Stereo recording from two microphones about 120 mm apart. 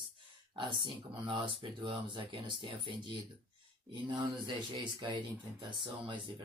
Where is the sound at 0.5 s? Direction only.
45° right (ahead or behind).